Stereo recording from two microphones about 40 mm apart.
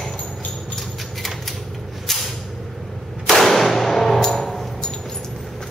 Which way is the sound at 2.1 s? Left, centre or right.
Centre.